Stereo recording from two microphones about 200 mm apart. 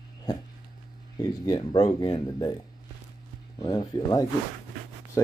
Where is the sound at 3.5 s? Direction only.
20° left (ahead or behind).